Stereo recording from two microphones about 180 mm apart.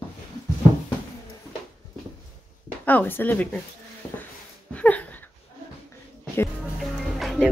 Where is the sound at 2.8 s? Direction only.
10° left (ahead or behind).